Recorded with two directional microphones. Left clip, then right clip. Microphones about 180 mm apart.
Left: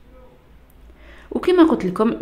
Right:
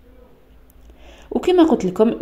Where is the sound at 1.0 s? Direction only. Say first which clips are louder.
Right 1 dB; 20° right (ahead or behind).